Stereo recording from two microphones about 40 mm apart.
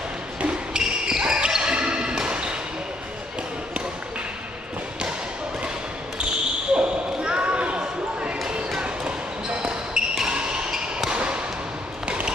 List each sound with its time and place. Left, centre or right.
0.7 s basketball bounce: centre
6.7 s basketball bounce: right
8.8 s basketball bounce: right
11.1 s a sound: right